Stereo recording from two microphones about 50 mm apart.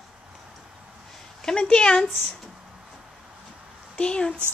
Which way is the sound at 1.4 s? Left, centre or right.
Centre.